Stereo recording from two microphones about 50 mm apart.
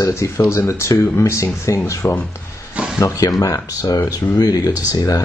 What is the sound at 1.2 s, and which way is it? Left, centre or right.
Speech, left.